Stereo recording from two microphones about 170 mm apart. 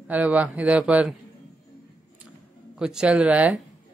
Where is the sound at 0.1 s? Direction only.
10° right (ahead or behind).